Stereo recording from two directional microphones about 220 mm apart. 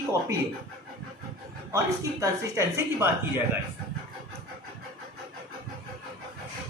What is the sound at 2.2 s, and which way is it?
Speech, 10° right (ahead or behind).